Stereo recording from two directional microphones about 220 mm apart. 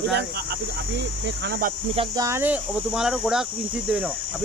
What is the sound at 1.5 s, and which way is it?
Speech, 40° right (ahead or behind).